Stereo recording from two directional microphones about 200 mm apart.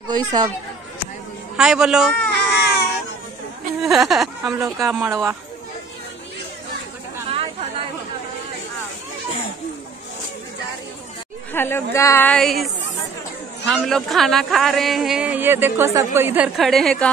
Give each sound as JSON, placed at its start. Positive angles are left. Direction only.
{"t": 0.1, "sound": "speech", "side_deg": -20}
{"t": 1.6, "sound": "speech", "side_deg": 0}
{"t": 2.3, "sound": "baby cry", "side_deg": 55}
{"t": 3.8, "sound": "speech", "side_deg": 0}
{"t": 4.6, "sound": "speech", "side_deg": -15}
{"t": 4.8, "sound": "speech", "side_deg": 0}
{"t": 5.1, "sound": "speech", "side_deg": -15}
{"t": 11.5, "sound": "a woman's voice", "side_deg": 10}
{"t": 16.5, "sound": "speech", "side_deg": 0}